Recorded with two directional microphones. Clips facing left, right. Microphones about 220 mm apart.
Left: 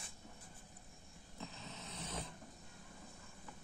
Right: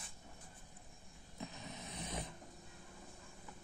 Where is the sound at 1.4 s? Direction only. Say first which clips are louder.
Right 2 dB; 15° right (ahead or behind).